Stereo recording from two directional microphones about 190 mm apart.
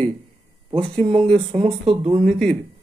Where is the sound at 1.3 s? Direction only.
30° right (ahead or behind).